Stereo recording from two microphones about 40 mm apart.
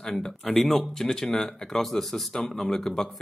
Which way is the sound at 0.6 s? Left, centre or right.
Centre.